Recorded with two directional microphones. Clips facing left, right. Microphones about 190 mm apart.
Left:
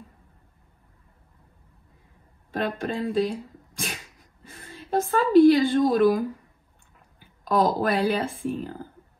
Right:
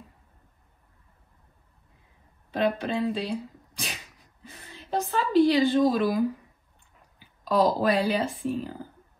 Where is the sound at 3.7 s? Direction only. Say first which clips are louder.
Left 4 dB; 50° left (ahead or behind).